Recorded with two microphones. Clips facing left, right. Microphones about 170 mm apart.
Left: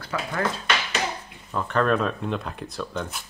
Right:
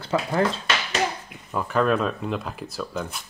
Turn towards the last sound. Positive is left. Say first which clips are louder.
# right 1 dB
turn(degrees=0)  # may be behind; listen again after turning